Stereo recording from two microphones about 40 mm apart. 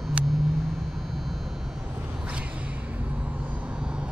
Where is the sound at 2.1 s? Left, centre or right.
Right.